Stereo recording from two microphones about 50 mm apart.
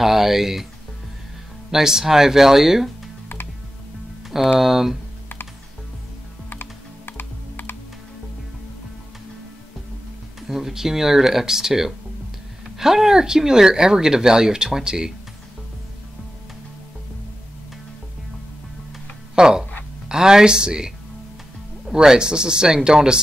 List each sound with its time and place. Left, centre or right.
0.0 s speech: centre
1.7 s speech: centre
4.6 s speech: centre
6.5 s typing: left
10.5 s speech: centre
19.3 s speech: centre